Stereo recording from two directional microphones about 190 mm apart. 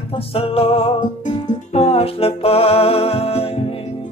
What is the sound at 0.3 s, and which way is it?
Music, 30° left (ahead or behind).